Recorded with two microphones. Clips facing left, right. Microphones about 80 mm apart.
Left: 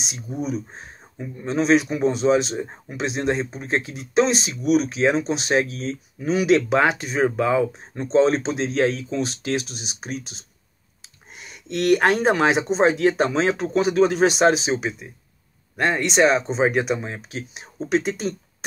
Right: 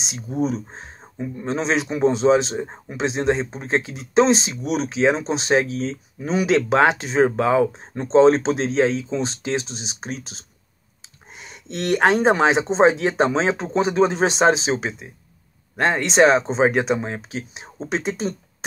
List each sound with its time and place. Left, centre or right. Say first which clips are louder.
0.0 s speech: right 5 dB; right
6.8 s speech: right 3 dB; right
8.0 s speech: right 4 dB; right
8.7 s speech: left 1 dB; right